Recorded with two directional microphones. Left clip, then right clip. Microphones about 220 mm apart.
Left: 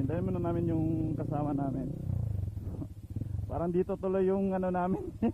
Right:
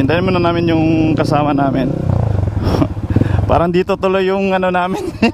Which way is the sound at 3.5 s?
10° right (ahead or behind).